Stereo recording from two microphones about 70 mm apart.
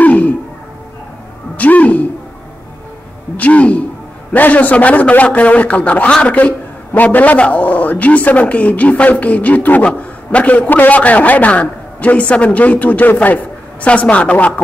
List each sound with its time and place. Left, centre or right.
0.0 s music: left
1.6 s a man's voice: left
3.3 s a man's voice: centre